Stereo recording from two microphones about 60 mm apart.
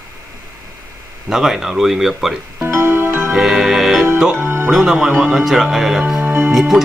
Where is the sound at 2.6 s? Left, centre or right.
Right.